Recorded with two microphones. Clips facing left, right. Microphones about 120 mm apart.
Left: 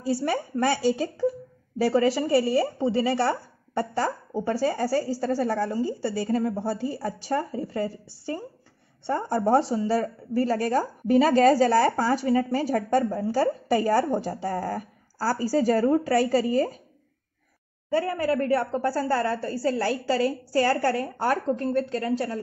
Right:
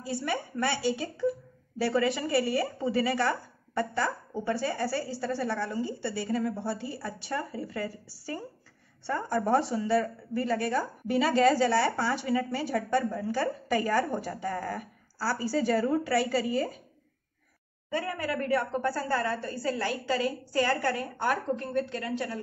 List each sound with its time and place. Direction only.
0.0 s speech: 40° left (ahead or behind)
17.8 s speech: 35° left (ahead or behind)